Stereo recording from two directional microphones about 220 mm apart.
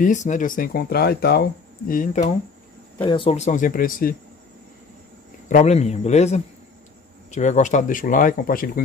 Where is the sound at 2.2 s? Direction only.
30° left (ahead or behind).